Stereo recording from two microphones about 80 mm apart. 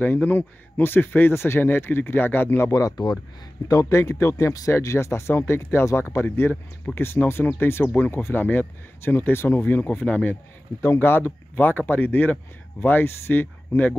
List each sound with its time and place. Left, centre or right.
0.0 s speech: left
2.7 s speech: left
6.9 s speech: centre
7.5 s speech: left
8.1 s speech: left